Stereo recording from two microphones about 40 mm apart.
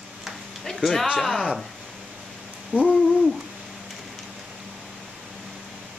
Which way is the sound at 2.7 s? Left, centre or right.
Right.